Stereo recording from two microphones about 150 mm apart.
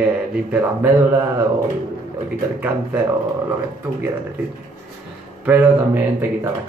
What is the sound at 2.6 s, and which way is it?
Speech, 10° right (ahead or behind).